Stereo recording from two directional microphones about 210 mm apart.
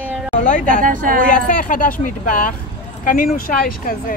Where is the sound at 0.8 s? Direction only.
40° right (ahead or behind).